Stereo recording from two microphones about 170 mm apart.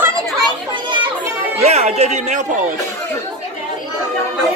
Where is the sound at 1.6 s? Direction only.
40° right (ahead or behind).